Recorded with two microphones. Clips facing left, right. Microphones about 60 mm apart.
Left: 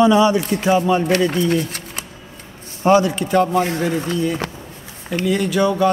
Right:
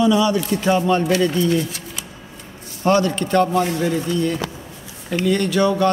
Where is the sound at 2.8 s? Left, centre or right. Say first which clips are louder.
Left 3 dB; centre.